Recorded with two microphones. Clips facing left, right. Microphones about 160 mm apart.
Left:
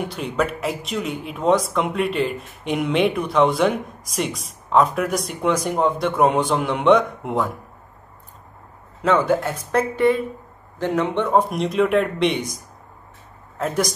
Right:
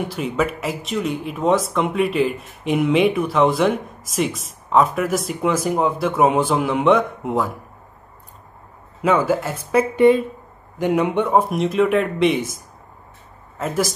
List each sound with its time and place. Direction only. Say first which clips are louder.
0.1 s speech: right 1 dB; centre (ahead or behind)
9.0 s speech: even; 5° right (ahead or behind)
9.9 s speech: right 7 dB; 20° right (ahead or behind); by 12.5 s centre (ahead or behind)
13.6 s speech: even; centre (ahead or behind)